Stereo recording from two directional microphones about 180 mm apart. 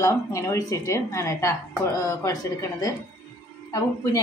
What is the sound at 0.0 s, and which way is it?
A woman's voice, 15° left (ahead or behind).